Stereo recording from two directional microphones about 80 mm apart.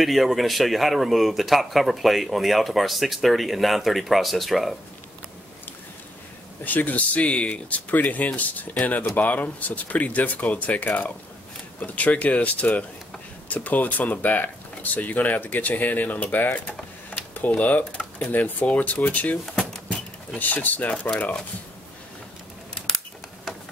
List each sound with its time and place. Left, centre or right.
0.0 s a man's voice: centre
6.6 s speech: left
19.4 s drawer open or close: centre
20.3 s speech: left